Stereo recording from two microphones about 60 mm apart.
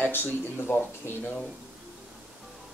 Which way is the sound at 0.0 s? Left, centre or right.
Left.